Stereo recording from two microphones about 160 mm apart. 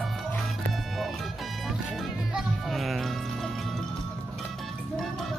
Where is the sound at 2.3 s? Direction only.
Centre (ahead or behind).